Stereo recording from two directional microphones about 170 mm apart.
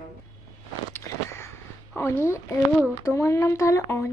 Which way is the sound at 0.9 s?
15° left (ahead or behind).